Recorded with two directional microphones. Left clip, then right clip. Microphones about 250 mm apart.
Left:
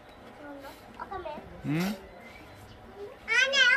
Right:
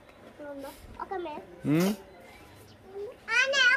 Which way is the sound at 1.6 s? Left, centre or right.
Right.